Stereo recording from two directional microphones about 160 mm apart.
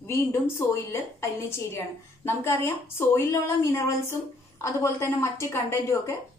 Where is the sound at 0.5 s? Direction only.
15° left (ahead or behind).